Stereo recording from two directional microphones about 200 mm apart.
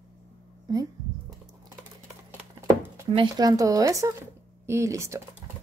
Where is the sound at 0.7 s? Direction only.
20° right (ahead or behind).